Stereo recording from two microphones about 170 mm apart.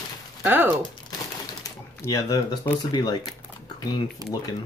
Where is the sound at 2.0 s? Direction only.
20° left (ahead or behind).